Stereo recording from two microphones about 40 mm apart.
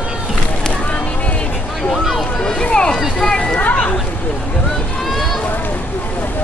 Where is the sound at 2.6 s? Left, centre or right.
Left.